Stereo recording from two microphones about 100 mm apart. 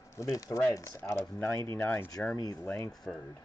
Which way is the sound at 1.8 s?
20° left (ahead or behind).